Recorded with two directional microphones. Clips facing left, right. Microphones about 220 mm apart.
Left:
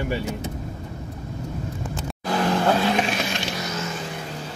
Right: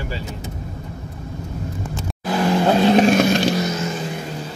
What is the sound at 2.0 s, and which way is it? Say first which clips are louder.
Vehicle: right 3 dB; 10° right (ahead or behind).